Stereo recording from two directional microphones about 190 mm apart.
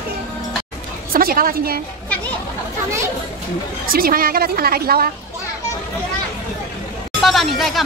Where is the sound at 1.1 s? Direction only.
50° right (ahead or behind).